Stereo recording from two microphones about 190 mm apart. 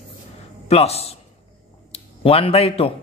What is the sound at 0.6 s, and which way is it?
A man's voice, 35° left (ahead or behind).